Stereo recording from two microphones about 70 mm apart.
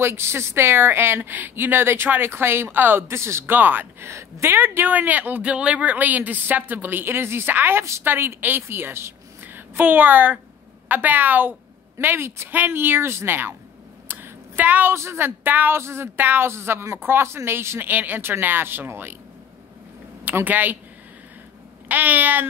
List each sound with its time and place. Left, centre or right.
0.0 s a woman's voice: right
3.5 s speech: right
4.0 s a woman's voice: right
14.0 s a sound: right
15.0 s a woman's voice: right
20.2 s speech: right
21.8 s speech: right